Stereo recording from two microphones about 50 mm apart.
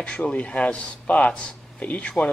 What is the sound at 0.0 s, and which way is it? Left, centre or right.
Speech, left.